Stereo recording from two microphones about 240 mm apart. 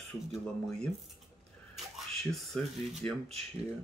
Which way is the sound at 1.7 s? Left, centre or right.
Centre.